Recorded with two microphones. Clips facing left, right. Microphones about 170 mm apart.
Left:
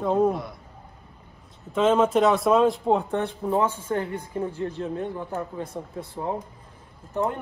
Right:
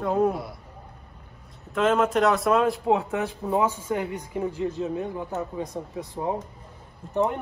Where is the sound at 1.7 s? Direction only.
Centre (ahead or behind).